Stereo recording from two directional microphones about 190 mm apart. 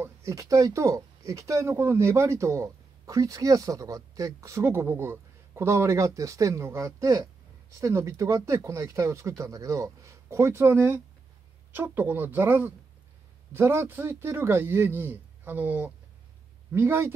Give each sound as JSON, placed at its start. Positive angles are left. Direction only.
{"t": 0.0, "sound": "speech", "side_deg": -15}